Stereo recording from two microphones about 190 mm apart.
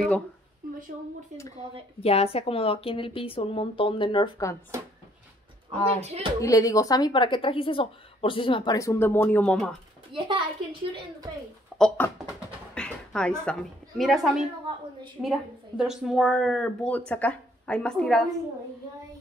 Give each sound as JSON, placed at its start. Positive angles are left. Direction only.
{"t": 0.6, "sound": "a sound", "side_deg": -45}
{"t": 1.3, "sound": "speech", "side_deg": -35}
{"t": 2.0, "sound": "speech", "side_deg": 30}
{"t": 5.7, "sound": "speech", "side_deg": -35}
{"t": 6.4, "sound": "speech", "side_deg": 15}
{"t": 8.7, "sound": "speech", "side_deg": 15}
{"t": 10.1, "sound": "speech", "side_deg": -25}
{"t": 11.7, "sound": "a sound", "side_deg": 0}
{"t": 13.5, "sound": "speech", "side_deg": 0}